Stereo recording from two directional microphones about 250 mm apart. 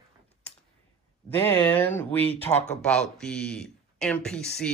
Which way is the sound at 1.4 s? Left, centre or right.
Centre.